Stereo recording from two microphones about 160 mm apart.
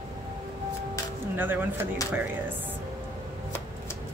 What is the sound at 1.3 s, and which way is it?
Speech, 10° right (ahead or behind).